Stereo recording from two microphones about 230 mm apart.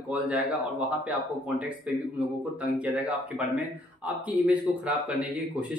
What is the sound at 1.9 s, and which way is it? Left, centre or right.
A man's voice, centre.